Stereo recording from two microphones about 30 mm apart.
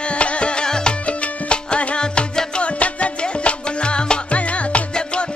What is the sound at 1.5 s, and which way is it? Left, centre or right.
Music, left.